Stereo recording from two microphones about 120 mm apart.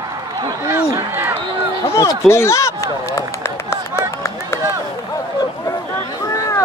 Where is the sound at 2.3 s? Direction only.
25° left (ahead or behind).